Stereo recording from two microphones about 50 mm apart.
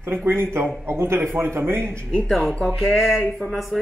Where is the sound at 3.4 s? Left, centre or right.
Left.